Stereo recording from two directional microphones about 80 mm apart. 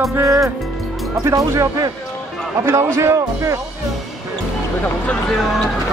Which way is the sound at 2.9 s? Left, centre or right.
Right.